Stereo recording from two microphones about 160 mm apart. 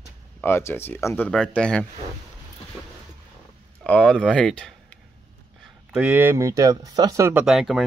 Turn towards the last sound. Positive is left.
turn(degrees=0)  # may be behind; listen again after turning